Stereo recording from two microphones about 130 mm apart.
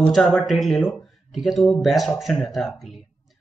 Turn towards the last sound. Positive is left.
turn(degrees=0)  # may be behind; listen again after turning